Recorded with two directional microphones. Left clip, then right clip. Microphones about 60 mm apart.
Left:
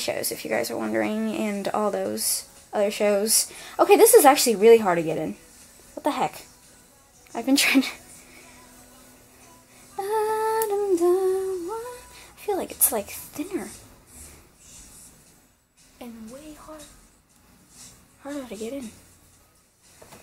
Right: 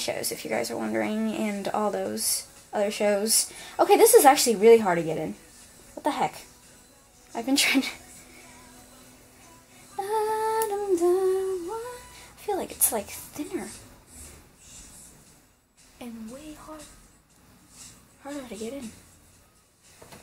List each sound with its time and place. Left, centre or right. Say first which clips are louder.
0.0 s speech: left 2 dB; left
9.9 s female singing: left 2 dB; left
11.0 s humming: left 1 dB; left
12.4 s a woman's voice: left 2 dB; left
16.0 s a sound: even; left
18.2 s speech: left 3 dB; left